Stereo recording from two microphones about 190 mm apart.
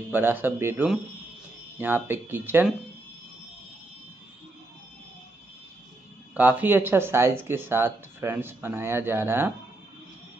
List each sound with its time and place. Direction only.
0.1 s speech: 10° right (ahead or behind)
6.3 s speech: 10° right (ahead or behind)